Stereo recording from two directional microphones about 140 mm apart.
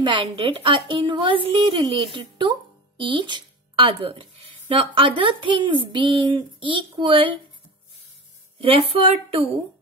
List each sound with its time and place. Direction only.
0.0 s speech: 35° right (ahead or behind)
8.5 s speech: 40° right (ahead or behind)